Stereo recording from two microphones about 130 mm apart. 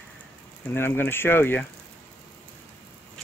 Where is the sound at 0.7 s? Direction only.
15° left (ahead or behind).